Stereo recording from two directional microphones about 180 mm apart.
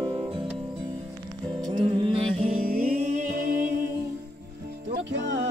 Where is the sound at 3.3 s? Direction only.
55° right (ahead or behind).